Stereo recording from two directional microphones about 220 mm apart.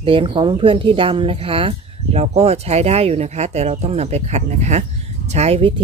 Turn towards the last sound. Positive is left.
turn(degrees=-25)  # may be behind; listen again after turning